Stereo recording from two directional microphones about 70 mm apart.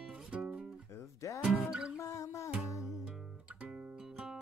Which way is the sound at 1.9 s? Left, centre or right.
Left.